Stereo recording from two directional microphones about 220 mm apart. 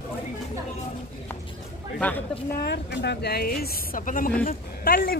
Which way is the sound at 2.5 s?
50° left (ahead or behind).